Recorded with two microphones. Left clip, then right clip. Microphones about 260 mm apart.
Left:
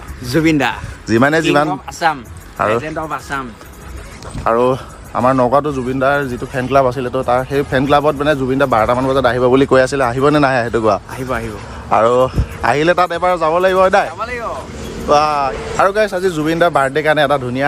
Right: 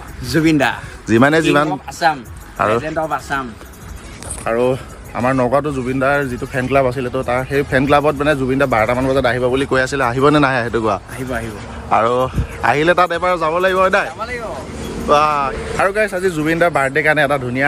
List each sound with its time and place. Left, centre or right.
0.3 s a man's voice: centre
4.5 s a man's voice: centre
9.4 s speech: left
9.7 s a man's voice: centre